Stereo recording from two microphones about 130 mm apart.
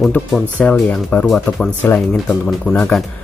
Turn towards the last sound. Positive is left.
turn(degrees=5)  # may be behind; listen again after turning